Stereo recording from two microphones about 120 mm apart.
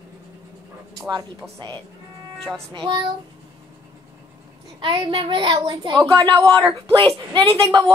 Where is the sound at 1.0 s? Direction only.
25° right (ahead or behind).